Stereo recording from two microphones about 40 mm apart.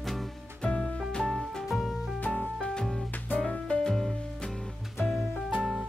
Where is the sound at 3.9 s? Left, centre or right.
Centre.